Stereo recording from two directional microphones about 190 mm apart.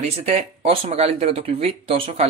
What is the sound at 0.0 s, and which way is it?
Speech, 35° right (ahead or behind).